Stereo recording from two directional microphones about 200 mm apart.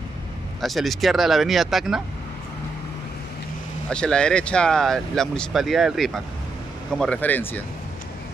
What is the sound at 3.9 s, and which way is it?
Speech, 5° left (ahead or behind).